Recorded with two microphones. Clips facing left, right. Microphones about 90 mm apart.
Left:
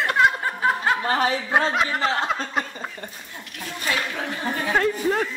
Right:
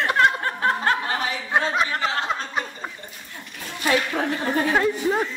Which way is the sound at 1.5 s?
5° left (ahead or behind).